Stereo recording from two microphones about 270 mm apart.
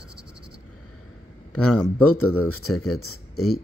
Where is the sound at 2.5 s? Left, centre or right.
Left.